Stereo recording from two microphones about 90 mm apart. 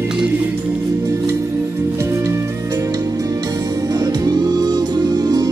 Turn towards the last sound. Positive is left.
turn(degrees=-50)  # may be behind; listen again after turning